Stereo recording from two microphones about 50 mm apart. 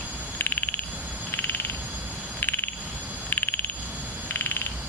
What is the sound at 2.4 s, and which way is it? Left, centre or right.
Cricket, left.